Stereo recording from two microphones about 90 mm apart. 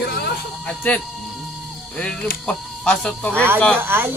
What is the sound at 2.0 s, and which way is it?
Speech, 10° left (ahead or behind).